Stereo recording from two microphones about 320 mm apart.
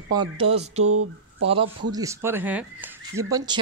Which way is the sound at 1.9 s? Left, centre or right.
Centre.